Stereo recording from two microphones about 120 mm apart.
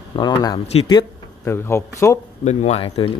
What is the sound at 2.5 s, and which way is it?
Speech, 65° left (ahead or behind).